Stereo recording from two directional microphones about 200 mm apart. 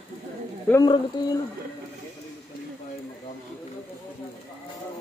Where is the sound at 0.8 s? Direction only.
20° left (ahead or behind).